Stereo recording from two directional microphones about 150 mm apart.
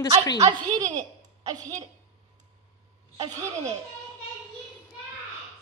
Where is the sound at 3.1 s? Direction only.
25° right (ahead or behind).